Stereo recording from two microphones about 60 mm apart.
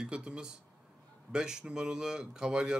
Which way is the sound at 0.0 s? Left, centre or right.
Centre.